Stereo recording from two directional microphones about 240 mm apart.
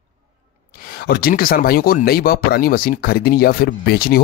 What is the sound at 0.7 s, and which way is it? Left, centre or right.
Speech, left.